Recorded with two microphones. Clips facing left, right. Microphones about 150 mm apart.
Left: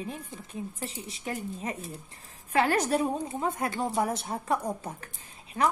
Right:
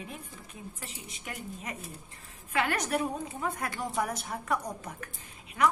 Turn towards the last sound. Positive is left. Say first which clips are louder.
# even
turn(degrees=30)  # may be behind; listen again after turning